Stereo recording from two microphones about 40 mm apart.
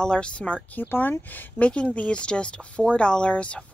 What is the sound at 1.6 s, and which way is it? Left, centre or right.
Speech, left.